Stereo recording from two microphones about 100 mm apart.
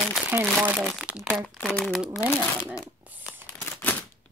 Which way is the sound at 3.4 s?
20° left (ahead or behind).